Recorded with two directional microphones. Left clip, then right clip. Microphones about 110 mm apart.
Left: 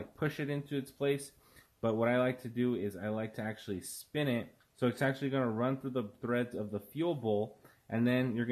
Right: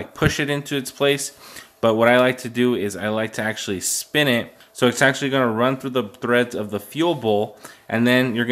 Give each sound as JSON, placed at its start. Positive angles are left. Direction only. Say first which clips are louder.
{"t": 0.2, "sound": "speech", "louder": "right 16 dB", "side_deg": -25}